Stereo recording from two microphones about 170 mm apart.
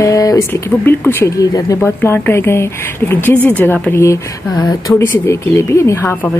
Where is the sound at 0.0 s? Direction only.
20° left (ahead or behind).